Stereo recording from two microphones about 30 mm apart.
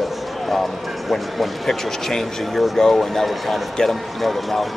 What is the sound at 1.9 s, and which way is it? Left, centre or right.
Speech, centre.